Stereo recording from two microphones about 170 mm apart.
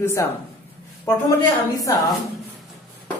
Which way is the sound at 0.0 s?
15° left (ahead or behind).